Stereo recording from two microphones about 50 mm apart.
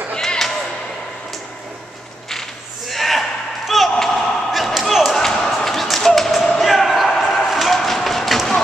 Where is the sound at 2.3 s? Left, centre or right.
Centre.